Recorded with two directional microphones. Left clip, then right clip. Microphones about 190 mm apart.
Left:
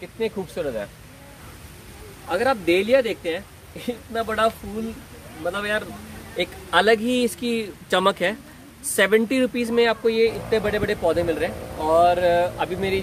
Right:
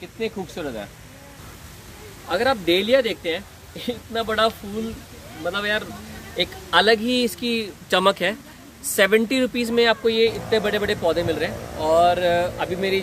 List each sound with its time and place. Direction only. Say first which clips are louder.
0.2 s speech: left 2 dB; 55° left (ahead or behind)
2.2 s speech: even; 5° left (ahead or behind); by 13.0 s 20° left (ahead or behind)